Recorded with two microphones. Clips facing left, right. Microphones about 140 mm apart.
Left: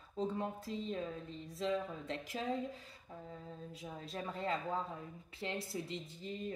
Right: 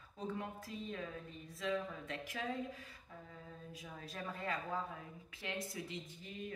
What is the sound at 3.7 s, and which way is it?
A woman's voice, 25° left (ahead or behind).